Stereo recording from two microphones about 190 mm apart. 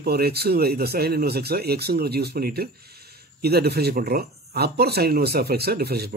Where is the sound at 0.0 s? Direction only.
55° right (ahead or behind).